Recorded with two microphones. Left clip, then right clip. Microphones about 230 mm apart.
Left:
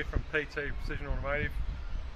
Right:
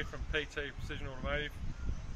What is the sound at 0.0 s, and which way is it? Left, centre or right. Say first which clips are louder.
Speech: left 4 dB; centre.